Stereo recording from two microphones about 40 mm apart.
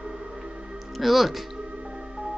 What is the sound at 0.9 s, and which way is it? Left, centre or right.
Speech, centre.